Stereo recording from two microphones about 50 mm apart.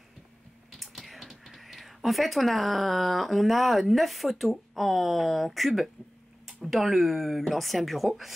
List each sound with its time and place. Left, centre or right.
0.7 s speech: centre